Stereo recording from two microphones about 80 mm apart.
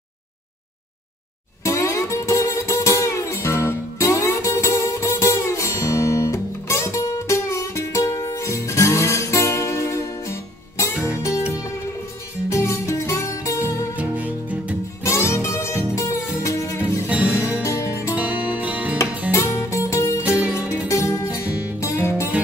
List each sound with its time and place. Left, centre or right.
1.6 s music: left
12.4 s music: left
13.9 s music: centre
15.0 s music: left
17.1 s music: centre
17.6 s music: left
18.1 s music: centre
19.3 s music: left
20.2 s music: centre
20.9 s music: left